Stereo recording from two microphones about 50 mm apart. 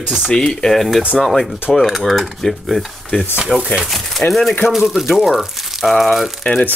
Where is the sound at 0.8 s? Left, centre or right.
Centre.